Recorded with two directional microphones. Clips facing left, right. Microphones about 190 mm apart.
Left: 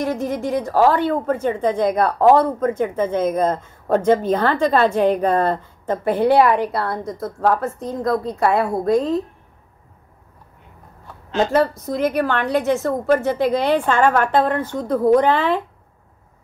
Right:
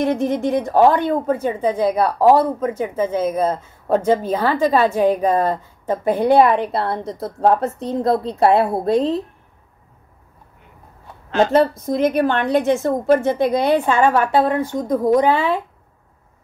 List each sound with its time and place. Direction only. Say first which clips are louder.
0.0 s a woman's voice: right 4 dB; 20° right (ahead or behind)
11.9 s a woman's voice: right 3 dB; 20° right (ahead or behind)